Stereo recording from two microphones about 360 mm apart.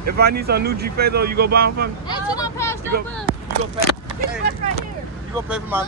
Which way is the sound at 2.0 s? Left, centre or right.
Centre.